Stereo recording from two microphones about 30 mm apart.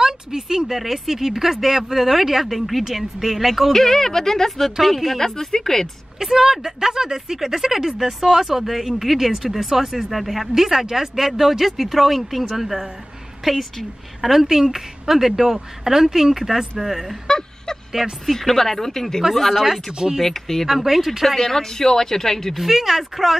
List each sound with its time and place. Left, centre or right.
0.0 s speech: centre
3.7 s speech: centre
5.2 s speech: centre
6.1 s speech: centre
17.3 s a sound: centre
18.2 s speech: centre
19.9 s speech: right
20.2 s speech: centre
20.6 s speech: centre
21.4 s speech: centre
22.6 s speech: centre